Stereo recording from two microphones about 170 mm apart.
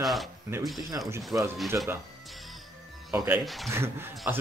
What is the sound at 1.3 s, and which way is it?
Speech, 10° right (ahead or behind).